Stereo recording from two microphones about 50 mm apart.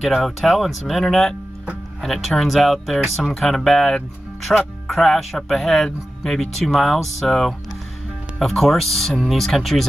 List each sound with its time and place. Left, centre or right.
0.0 s speech: centre
4.5 s speech: centre
4.8 s speech: centre